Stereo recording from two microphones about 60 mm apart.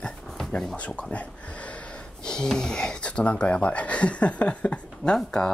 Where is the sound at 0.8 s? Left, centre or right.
Left.